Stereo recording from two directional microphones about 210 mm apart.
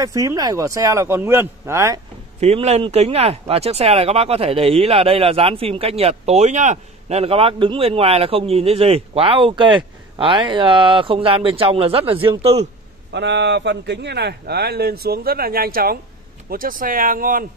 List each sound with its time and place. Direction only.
0.0 s speech: 15° right (ahead or behind)
2.4 s speech: 30° right (ahead or behind)
13.1 s speech: 55° right (ahead or behind)